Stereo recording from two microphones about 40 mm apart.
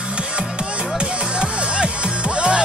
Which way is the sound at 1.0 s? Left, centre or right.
Right.